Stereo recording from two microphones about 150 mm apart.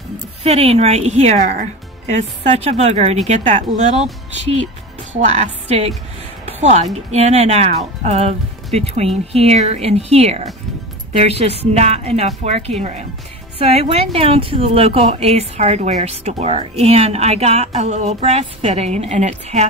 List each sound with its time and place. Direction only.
0.4 s speech: 40° right (ahead or behind)